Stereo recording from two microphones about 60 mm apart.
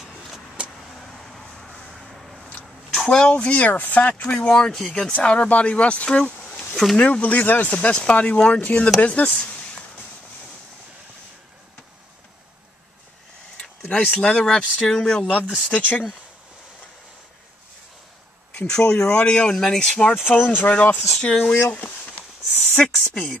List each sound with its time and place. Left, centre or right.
0.0 s vehicle: centre
2.9 s speech: centre
6.7 s a sound: centre
7.0 s speech: left
13.6 s a sound: centre
14.1 s speech: centre
18.7 s speech: centre
20.2 s speech: left
23.0 s speech: centre